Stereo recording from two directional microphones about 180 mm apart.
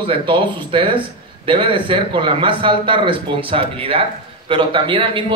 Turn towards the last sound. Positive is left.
turn(degrees=-30)  # may be behind; listen again after turning